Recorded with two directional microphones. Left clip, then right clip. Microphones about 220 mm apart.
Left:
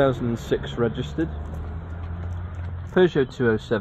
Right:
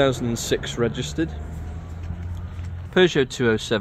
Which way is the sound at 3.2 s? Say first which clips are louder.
Right 1 dB; 30° right (ahead or behind).